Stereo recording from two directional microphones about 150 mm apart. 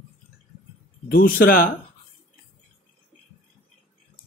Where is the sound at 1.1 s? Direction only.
75° left (ahead or behind).